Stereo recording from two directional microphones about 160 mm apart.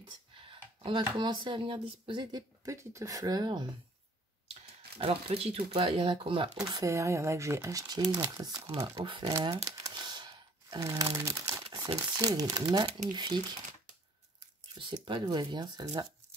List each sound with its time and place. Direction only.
0.0 s speech: 30° right (ahead or behind)
4.9 s speech: 35° right (ahead or behind)
6.6 s speech: 20° right (ahead or behind)
9.7 s a sound: 25° right (ahead or behind)
12.2 s speech: 20° right (ahead or behind)
15.0 s speech: 30° right (ahead or behind)